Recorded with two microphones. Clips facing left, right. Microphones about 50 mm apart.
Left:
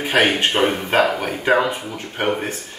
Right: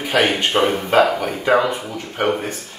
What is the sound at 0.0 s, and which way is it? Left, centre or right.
Speech, left.